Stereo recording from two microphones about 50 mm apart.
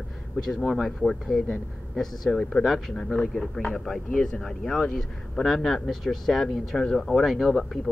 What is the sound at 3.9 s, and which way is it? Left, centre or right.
Speech, centre.